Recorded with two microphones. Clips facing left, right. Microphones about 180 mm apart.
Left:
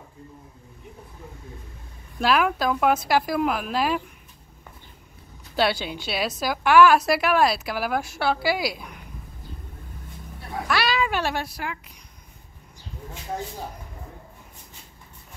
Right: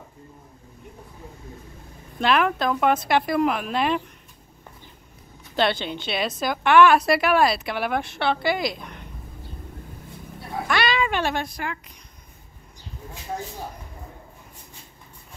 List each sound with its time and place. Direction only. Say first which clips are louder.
2.1 s a woman's voice: even; 5° left (ahead or behind)
5.6 s a woman's voice: right 1 dB; 5° left (ahead or behind)
10.7 s cat: right 1 dB; 5° left (ahead or behind)